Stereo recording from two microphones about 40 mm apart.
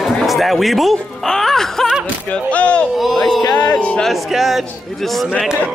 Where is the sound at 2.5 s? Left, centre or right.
Left.